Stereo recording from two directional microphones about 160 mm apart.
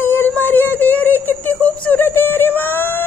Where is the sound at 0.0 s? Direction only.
15° left (ahead or behind).